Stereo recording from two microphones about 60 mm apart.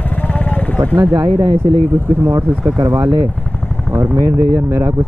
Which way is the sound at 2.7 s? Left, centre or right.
Right.